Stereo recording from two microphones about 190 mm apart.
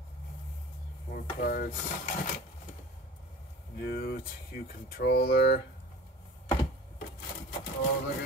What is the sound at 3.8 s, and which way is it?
Speech, 55° left (ahead or behind).